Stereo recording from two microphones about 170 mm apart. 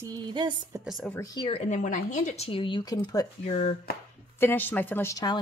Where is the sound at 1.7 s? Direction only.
45° left (ahead or behind); by 3.0 s 25° left (ahead or behind).